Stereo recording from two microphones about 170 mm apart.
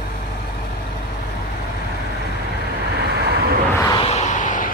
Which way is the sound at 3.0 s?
75° right (ahead or behind).